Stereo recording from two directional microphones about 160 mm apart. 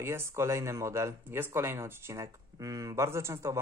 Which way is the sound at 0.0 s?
15° right (ahead or behind).